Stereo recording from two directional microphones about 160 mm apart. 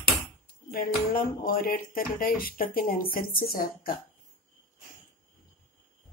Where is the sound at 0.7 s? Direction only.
70° left (ahead or behind).